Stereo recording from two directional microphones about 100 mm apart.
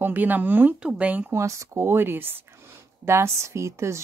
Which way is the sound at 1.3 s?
30° right (ahead or behind).